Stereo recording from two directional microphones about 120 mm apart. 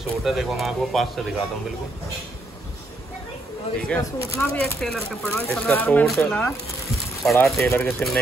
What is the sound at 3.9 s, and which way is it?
Speech, 10° left (ahead or behind).